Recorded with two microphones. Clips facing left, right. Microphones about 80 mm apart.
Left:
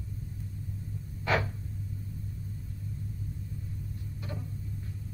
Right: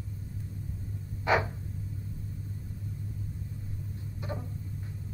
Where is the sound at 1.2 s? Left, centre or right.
Centre.